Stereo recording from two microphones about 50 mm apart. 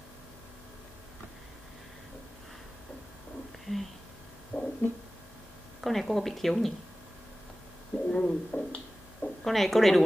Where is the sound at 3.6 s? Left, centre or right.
Centre.